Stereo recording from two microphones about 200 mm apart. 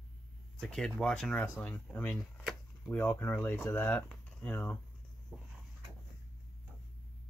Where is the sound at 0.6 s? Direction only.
Centre (ahead or behind).